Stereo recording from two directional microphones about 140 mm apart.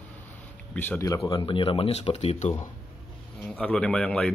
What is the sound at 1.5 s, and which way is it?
Speech, 40° left (ahead or behind).